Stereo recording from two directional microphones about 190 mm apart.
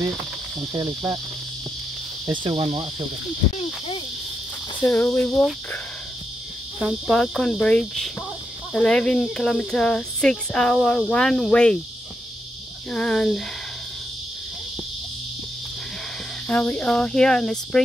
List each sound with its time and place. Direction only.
0.7 s cricket: 20° right (ahead or behind)
2.2 s cricket: 25° right (ahead or behind)
4.8 s speech: 10° left (ahead or behind)
6.8 s speech: centre (ahead or behind)
12.9 s speech: 5° left (ahead or behind)
16.4 s speech: 5° left (ahead or behind)